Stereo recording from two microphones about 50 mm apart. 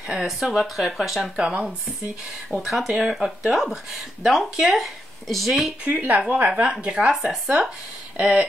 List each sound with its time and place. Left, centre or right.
0.1 s speech: centre
2.5 s speech: centre
5.9 s speech: right; by 8.5 s centre